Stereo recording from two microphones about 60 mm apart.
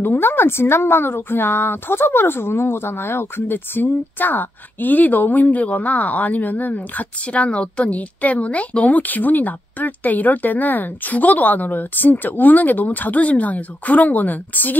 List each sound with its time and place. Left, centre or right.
0.0 s a woman's voice: left